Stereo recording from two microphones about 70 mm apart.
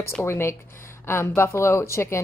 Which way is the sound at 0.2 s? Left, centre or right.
Left.